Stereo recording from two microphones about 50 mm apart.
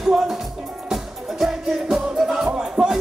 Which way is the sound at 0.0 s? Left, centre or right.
Centre.